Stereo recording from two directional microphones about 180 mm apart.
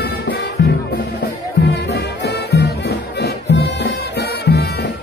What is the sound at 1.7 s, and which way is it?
Music, 65° left (ahead or behind).